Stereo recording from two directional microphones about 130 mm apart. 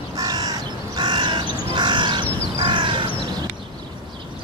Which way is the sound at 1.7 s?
35° right (ahead or behind).